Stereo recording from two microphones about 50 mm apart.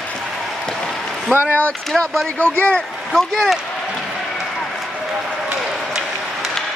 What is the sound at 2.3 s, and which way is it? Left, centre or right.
Speech, left.